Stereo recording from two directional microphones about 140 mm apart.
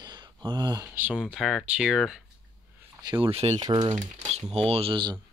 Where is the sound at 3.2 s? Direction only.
45° right (ahead or behind).